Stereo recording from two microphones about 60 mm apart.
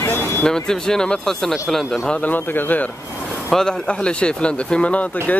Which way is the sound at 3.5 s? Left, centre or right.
Centre.